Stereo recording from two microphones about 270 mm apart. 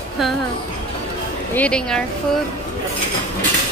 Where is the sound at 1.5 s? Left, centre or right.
Centre.